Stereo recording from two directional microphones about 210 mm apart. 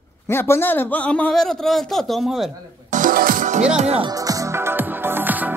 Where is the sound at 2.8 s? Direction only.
40° right (ahead or behind); by 5.5 s 10° right (ahead or behind).